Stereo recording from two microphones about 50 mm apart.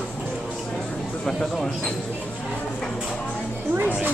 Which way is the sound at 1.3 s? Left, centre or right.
Centre.